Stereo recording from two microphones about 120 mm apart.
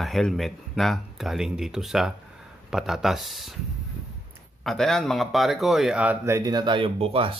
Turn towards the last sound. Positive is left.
turn(degrees=-50)  # may be behind; listen again after turning